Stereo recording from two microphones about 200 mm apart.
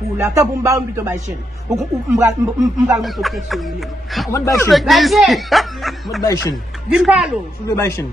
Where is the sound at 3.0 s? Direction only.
Centre (ahead or behind).